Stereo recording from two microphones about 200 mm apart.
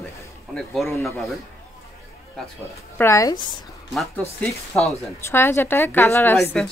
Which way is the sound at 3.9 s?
Centre (ahead or behind).